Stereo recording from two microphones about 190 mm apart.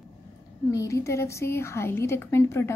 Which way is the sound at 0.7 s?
15° left (ahead or behind).